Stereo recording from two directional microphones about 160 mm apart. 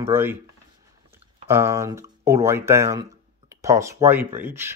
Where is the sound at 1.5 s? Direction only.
15° right (ahead or behind).